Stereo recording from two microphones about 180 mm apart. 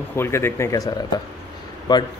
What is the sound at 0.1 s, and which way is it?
Speech, 15° left (ahead or behind).